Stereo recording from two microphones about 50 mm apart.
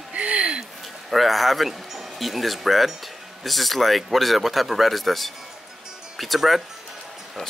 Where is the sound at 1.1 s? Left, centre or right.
Centre.